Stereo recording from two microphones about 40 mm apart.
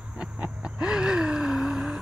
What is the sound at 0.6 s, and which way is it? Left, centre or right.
Gasp, right.